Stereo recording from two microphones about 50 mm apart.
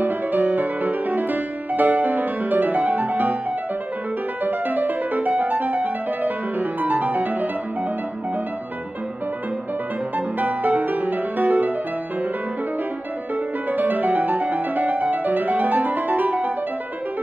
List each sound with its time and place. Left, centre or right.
0.0 s music: right
4.5 s music: right
10.1 s music: right
13.7 s music: right